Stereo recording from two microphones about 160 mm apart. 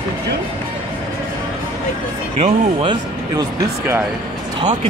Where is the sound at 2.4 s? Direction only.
30° right (ahead or behind).